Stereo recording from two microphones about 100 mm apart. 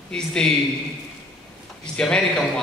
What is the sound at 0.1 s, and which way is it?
Speech, 10° left (ahead or behind).